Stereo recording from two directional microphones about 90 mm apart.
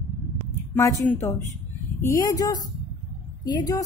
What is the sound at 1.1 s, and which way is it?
Speech, 30° left (ahead or behind).